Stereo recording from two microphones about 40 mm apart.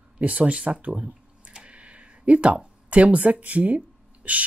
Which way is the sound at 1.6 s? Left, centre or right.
Right.